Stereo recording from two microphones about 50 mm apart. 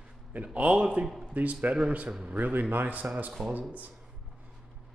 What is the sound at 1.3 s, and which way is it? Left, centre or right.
Speech, right.